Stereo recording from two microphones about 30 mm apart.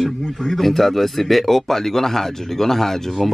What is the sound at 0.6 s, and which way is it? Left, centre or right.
Speech, centre.